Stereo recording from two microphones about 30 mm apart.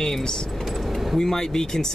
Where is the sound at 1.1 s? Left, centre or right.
Centre.